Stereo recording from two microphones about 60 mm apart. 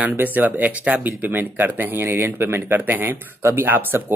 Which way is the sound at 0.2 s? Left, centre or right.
Right.